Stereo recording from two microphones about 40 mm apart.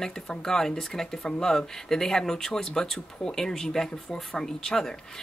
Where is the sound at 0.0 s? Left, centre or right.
Centre.